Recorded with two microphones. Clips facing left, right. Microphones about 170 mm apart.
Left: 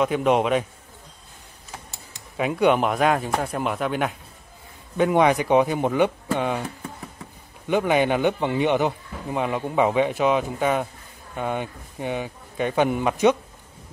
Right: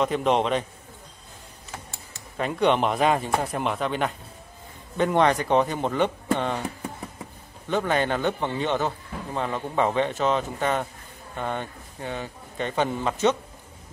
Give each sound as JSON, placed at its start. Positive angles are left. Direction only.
{"t": 0.0, "sound": "speech", "side_deg": 5}
{"t": 2.1, "sound": "a man's voice", "side_deg": 5}
{"t": 7.6, "sound": "a man's voice", "side_deg": 15}